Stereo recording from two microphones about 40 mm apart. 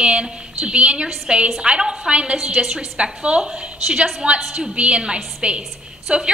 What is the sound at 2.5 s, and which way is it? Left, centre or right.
Speech, centre.